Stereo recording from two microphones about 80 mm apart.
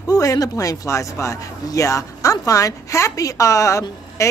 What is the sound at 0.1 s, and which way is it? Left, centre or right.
A woman's voice, left.